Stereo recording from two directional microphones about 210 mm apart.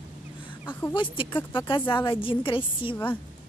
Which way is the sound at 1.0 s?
25° left (ahead or behind).